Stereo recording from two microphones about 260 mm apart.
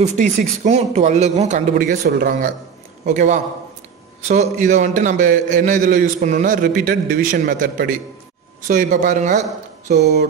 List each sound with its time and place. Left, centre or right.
0.0 s a man's voice: right